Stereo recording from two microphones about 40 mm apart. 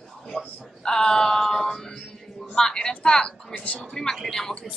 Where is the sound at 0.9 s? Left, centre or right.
Centre.